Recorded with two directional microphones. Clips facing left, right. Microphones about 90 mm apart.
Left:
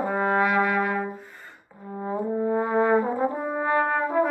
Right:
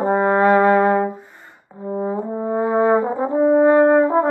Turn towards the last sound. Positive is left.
turn(degrees=-35)  # may be behind; listen again after turning